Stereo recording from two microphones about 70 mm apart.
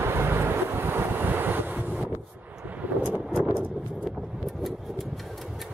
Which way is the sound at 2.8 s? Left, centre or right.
Right.